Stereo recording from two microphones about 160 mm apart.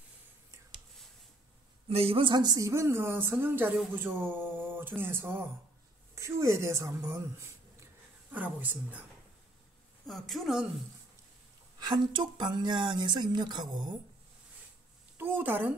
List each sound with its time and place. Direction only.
1.9 s a woman's voice: 40° right (ahead or behind); by 9.0 s 10° right (ahead or behind)
10.0 s a woman's voice: centre (ahead or behind)
11.8 s speech: 30° right (ahead or behind)
15.1 s speech: 10° right (ahead or behind)